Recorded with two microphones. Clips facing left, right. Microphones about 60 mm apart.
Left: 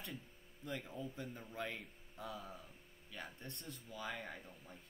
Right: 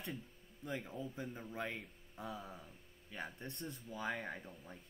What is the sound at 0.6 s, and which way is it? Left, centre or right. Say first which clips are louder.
Speech: right 2 dB; centre.